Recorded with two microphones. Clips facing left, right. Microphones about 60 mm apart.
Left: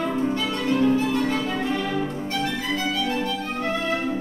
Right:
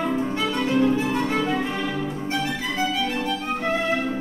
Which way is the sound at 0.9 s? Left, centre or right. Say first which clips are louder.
Left 1 dB; centre.